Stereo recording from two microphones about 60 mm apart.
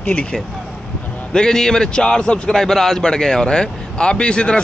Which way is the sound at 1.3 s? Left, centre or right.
Centre.